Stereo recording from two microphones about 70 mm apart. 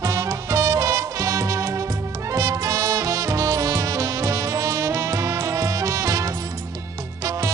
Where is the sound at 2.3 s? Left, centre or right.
Right.